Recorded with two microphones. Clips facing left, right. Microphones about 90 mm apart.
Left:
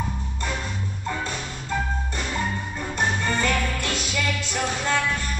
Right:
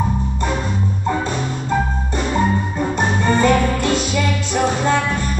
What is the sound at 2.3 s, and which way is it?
Music, 30° right (ahead or behind).